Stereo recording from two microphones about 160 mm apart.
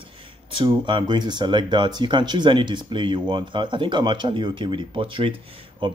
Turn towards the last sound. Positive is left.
turn(degrees=-30)  # may be behind; listen again after turning